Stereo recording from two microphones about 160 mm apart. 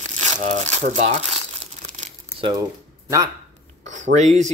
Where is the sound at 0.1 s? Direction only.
45° right (ahead or behind).